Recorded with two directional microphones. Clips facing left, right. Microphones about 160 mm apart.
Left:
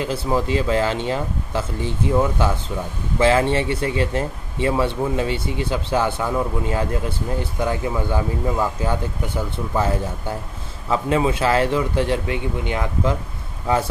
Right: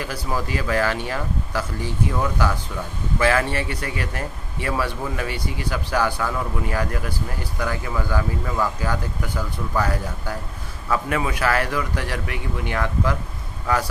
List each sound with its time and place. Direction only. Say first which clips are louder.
0.0 s speech: left 5 dB; 25° left (ahead or behind)